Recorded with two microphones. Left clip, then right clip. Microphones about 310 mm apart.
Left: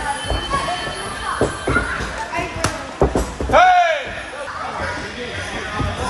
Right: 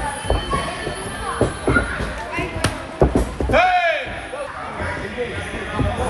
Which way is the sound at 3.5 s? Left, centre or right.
Centre.